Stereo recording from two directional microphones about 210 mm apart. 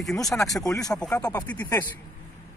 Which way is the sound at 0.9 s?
5° left (ahead or behind).